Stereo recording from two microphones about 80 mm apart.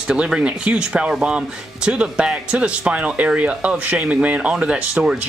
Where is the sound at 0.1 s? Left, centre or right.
Centre.